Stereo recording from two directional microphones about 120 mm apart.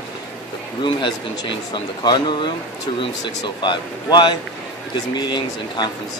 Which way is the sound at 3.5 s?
40° left (ahead or behind).